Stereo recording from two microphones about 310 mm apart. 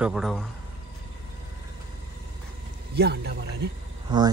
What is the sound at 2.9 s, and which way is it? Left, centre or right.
Speech, right.